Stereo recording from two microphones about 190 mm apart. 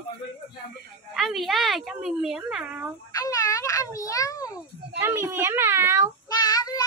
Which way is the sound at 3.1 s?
20° left (ahead or behind).